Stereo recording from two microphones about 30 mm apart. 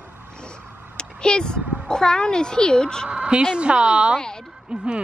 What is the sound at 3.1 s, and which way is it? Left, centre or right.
A woman's voice, right.